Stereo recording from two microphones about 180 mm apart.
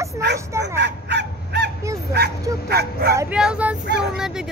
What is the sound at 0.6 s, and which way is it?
Speech, 70° right (ahead or behind).